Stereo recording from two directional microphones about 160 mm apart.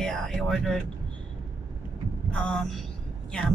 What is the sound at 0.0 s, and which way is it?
Speech, centre (ahead or behind).